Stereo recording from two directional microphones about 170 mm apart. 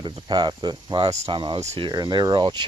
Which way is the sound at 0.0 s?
25° right (ahead or behind).